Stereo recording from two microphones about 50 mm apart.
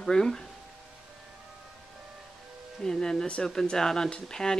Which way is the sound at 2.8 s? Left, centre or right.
Centre.